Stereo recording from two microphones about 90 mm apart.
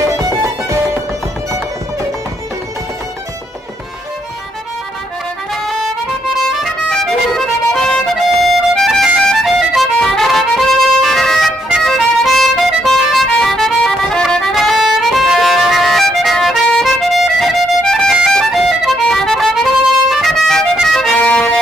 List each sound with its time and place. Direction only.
0.2 s music: 35° right (ahead or behind)
6.6 s music: centre (ahead or behind)